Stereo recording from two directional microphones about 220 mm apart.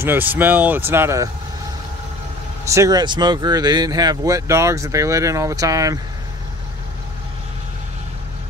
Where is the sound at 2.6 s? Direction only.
15° right (ahead or behind).